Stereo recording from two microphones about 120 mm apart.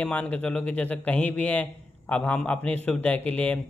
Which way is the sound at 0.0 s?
10° left (ahead or behind).